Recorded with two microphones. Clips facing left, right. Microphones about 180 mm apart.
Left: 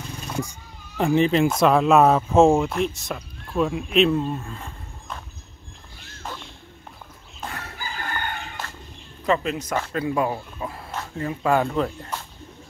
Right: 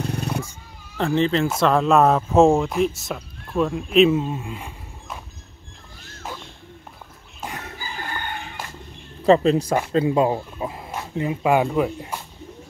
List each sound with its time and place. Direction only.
0.0 s a sound: 65° right (ahead or behind)
0.5 s cat: 15° left (ahead or behind)
1.6 s speech: 5° left (ahead or behind); by 5.2 s 10° right (ahead or behind)
7.3 s chicken: 15° right (ahead or behind)
9.2 s speech: 35° right (ahead or behind); by 12.2 s 10° right (ahead or behind)